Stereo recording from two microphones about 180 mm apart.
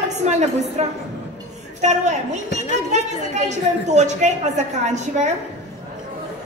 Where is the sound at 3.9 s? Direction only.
40° right (ahead or behind).